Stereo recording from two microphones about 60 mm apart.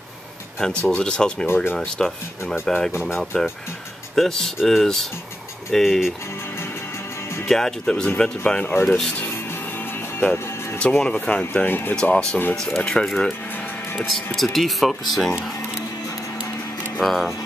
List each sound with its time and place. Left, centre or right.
0.6 s speech: centre
1.5 s speech: left
2.6 s speech: centre
7.4 s speech: centre
8.8 s speech: centre
10.8 s speech: centre
11.6 s speech: left
11.9 s speech: centre
17.0 s speech: centre